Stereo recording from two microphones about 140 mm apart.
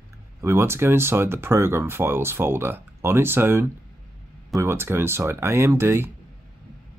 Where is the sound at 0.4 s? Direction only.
20° right (ahead or behind).